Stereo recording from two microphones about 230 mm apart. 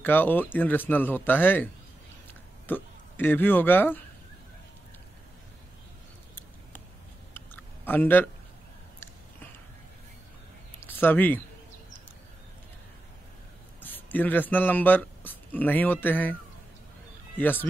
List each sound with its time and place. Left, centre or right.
0.0 s speech: centre
7.3 s a sound: centre
10.9 s speech: centre
13.8 s speech: centre
17.4 s speech: centre